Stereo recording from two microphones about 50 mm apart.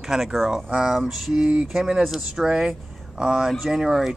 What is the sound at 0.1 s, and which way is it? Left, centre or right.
Speech, centre.